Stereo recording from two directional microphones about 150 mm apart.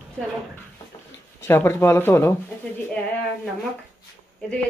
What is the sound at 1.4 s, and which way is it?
Speech, 15° left (ahead or behind).